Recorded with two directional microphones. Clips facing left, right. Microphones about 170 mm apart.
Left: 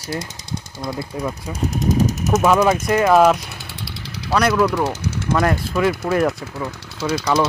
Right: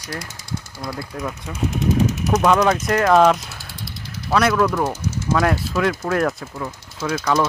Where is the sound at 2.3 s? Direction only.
5° left (ahead or behind).